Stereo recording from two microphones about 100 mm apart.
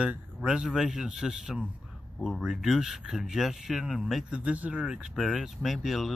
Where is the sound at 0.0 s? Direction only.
10° right (ahead or behind).